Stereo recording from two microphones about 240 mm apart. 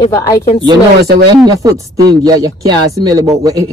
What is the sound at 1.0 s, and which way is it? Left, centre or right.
Speech, right.